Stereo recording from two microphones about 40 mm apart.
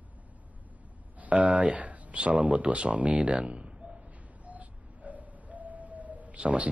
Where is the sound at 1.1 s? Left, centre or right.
Right.